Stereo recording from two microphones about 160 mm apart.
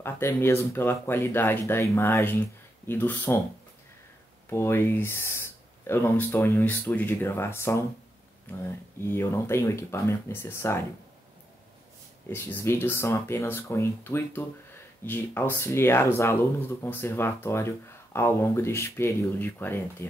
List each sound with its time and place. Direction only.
0.0 s speech: 15° left (ahead or behind)
4.5 s speech: 15° left (ahead or behind)
12.3 s speech: 10° left (ahead or behind)